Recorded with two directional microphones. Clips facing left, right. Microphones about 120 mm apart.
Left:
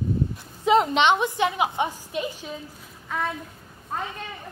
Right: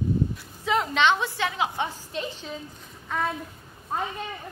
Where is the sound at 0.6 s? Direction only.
20° left (ahead or behind).